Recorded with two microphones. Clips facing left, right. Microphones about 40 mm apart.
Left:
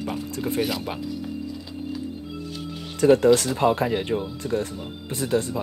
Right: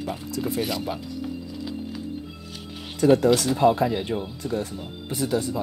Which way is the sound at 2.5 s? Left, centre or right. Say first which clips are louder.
Left 3 dB; centre.